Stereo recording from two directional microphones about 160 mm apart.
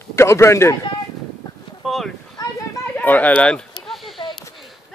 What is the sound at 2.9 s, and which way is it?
Speech, 10° left (ahead or behind).